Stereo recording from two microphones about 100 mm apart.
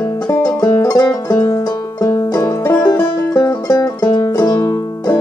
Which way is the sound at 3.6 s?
35° left (ahead or behind).